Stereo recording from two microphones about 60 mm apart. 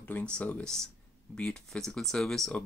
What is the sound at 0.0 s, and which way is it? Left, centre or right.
Speech, centre.